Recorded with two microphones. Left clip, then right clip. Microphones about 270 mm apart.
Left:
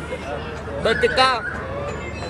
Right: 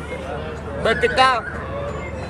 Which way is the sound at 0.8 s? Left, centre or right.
Centre.